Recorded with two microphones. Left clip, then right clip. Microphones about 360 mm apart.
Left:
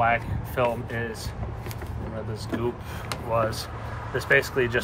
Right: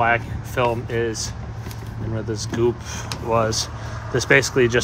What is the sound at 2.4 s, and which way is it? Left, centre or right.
Speech, right.